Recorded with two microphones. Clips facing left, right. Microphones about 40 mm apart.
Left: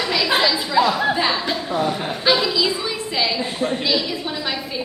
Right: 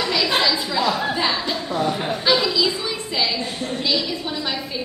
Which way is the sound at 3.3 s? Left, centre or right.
Centre.